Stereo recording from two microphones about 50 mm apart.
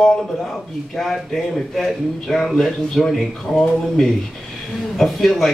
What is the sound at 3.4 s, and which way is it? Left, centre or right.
Speech, centre.